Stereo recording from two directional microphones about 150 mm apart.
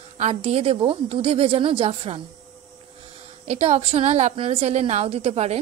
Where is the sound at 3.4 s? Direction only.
50° right (ahead or behind).